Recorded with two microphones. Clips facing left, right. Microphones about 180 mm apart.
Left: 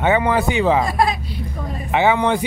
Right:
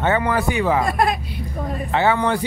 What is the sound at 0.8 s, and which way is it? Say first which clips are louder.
Speech: even; 55° right (ahead or behind).